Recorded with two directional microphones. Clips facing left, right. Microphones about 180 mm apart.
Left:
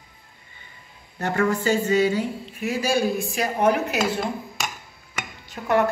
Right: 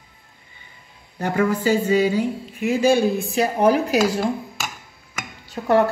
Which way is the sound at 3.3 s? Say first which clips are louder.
Right 4 dB; 35° right (ahead or behind).